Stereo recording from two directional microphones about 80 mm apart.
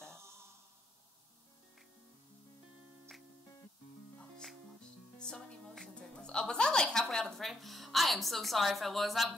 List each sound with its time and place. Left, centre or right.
3.1 s music: centre
5.2 s music: centre